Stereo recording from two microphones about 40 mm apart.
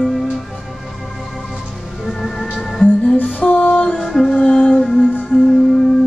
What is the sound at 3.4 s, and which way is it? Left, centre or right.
Music, left.